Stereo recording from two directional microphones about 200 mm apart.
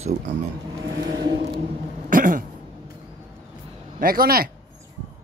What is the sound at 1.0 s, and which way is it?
Vehicle, 20° right (ahead or behind).